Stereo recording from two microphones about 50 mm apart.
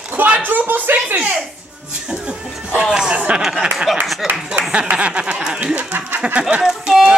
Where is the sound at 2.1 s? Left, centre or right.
Centre.